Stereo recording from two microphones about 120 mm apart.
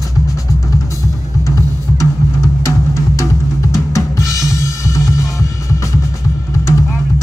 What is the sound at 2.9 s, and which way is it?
Music, 25° left (ahead or behind).